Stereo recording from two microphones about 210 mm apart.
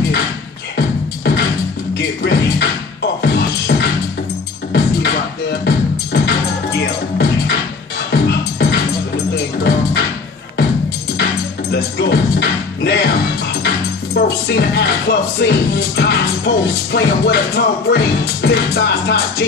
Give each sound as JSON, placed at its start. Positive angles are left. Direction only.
{"t": 0.7, "sound": "music", "side_deg": 50}
{"t": 8.1, "sound": "music", "side_deg": 55}
{"t": 11.7, "sound": "music", "side_deg": 50}
{"t": 13.6, "sound": "speech", "side_deg": 55}